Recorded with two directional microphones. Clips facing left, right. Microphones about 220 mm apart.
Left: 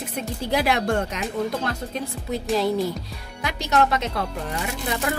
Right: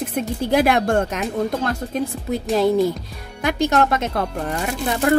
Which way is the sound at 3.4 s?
50° right (ahead or behind).